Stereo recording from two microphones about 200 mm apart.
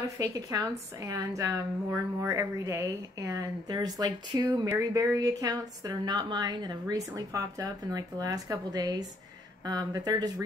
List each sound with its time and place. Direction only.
0.2 s a woman's voice: 20° right (ahead or behind)